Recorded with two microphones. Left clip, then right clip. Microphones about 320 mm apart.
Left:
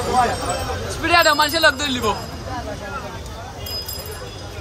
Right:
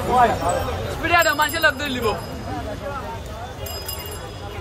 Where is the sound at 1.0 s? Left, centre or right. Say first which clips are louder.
Left 3 dB; centre.